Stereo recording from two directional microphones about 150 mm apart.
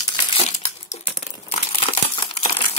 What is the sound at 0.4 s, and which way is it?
Crumpling, 45° left (ahead or behind).